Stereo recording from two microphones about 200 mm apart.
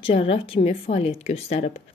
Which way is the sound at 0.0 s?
30° left (ahead or behind).